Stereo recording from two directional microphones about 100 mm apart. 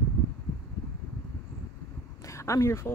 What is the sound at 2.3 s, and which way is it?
Speech, 30° left (ahead or behind).